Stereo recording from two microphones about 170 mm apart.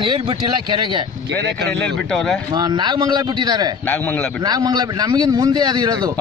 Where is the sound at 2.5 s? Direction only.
25° right (ahead or behind).